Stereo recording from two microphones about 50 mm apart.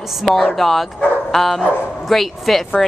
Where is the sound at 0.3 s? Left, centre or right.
Centre.